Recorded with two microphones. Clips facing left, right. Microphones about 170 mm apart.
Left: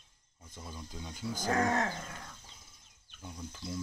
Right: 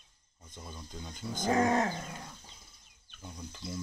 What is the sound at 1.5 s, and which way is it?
Speech, 15° right (ahead or behind).